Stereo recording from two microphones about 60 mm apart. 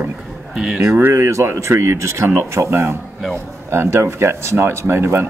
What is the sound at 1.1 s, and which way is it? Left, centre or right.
Speech, right.